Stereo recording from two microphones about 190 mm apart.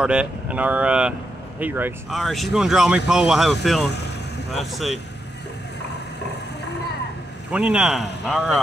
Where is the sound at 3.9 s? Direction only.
65° left (ahead or behind).